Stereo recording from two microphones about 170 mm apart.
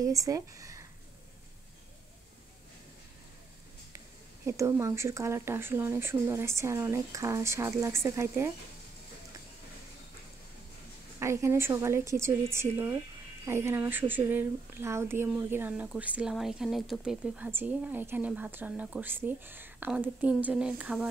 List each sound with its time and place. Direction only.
0.0 s speech: 20° right (ahead or behind)
4.5 s speech: 15° right (ahead or behind)
11.1 s speech: 15° right (ahead or behind)